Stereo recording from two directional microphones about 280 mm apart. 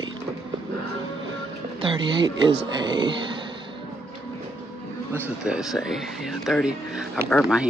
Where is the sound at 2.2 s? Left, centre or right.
Centre.